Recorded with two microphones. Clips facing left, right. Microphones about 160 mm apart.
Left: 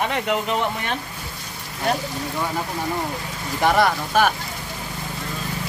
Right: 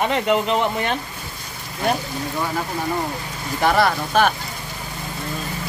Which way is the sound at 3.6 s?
15° left (ahead or behind).